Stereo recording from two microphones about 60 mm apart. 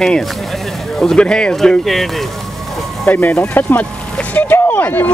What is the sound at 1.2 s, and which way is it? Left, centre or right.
A man's voice, centre.